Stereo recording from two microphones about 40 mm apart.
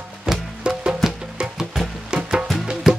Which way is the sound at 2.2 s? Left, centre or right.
Centre.